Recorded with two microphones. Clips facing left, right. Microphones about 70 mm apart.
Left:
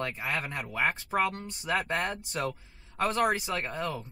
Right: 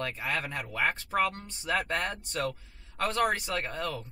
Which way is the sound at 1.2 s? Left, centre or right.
Centre.